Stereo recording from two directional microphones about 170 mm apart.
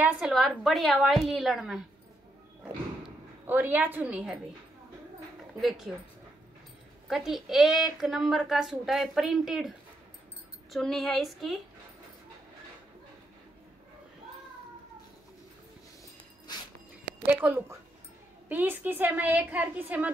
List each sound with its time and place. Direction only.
0.0 s a woman's voice: 5° right (ahead or behind)
3.4 s a woman's voice: 10° right (ahead or behind)
7.1 s a woman's voice: centre (ahead or behind)
17.3 s a woman's voice: 10° right (ahead or behind)